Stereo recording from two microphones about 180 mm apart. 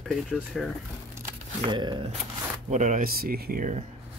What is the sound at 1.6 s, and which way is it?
Speech, 25° right (ahead or behind).